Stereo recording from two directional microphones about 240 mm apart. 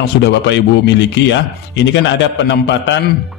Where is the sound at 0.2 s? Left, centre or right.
Left.